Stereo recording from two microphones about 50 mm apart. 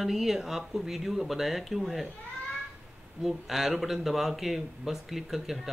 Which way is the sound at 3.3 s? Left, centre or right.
Centre.